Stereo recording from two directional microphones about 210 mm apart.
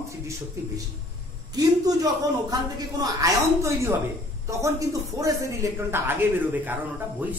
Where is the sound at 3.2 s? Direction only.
15° right (ahead or behind).